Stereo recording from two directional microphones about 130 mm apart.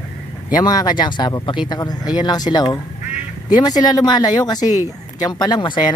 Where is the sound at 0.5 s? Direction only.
30° left (ahead or behind).